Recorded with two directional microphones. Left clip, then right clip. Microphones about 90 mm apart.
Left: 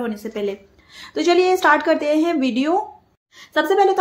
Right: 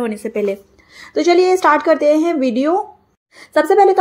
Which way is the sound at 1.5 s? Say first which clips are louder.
Right 3 dB; 30° right (ahead or behind).